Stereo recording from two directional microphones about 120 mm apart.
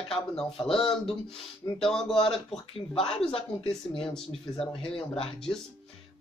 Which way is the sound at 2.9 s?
50° left (ahead or behind).